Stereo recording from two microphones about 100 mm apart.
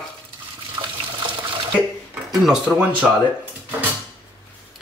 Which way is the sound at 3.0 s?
5° right (ahead or behind).